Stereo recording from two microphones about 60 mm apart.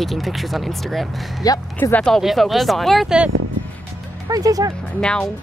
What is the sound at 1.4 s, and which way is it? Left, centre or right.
Speech, left.